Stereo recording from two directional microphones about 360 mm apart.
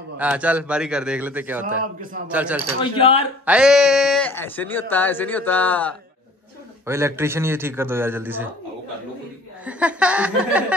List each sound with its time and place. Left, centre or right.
0.2 s speech: centre
2.8 s speech: centre
3.4 s speech: centre
6.9 s a man's voice: centre
9.7 s speech: centre